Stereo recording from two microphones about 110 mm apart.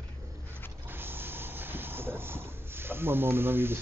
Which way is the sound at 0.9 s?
20° right (ahead or behind).